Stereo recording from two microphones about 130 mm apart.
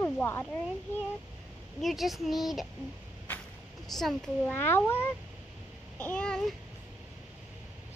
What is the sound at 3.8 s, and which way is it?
Speech, centre (ahead or behind).